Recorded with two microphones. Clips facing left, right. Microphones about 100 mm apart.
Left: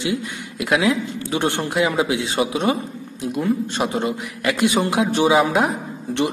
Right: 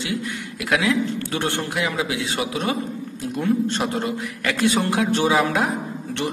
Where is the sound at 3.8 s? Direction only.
15° left (ahead or behind).